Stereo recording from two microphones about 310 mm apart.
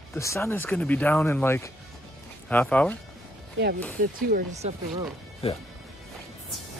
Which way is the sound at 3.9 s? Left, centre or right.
Right.